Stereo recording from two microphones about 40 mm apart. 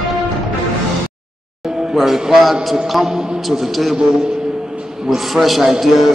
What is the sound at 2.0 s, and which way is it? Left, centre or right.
A man's voice, centre.